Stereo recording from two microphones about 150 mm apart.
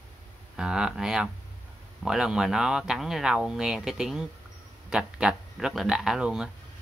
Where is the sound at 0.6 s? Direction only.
5° right (ahead or behind).